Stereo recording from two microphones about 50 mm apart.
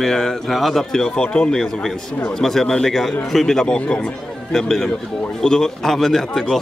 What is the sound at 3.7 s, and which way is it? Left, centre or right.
Speech, left.